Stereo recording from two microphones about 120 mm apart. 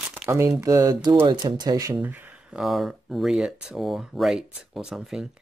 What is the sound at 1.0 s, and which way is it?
Speech, 40° right (ahead or behind).